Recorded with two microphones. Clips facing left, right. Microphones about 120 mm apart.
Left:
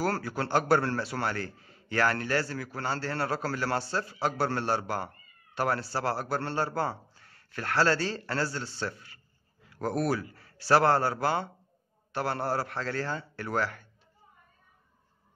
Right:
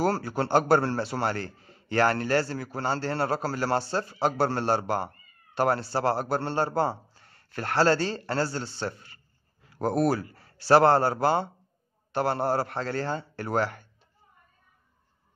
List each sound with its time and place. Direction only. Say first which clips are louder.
0.0 s speech: right 4 dB; 25° right (ahead or behind)